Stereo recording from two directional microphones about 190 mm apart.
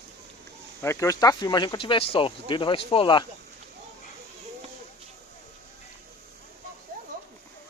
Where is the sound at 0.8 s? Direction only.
15° left (ahead or behind).